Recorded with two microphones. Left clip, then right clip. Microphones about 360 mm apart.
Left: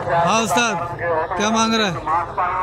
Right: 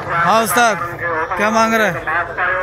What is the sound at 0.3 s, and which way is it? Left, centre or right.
A man's voice, centre.